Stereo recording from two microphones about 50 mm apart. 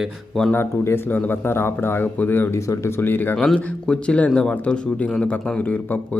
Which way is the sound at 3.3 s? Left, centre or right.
Centre.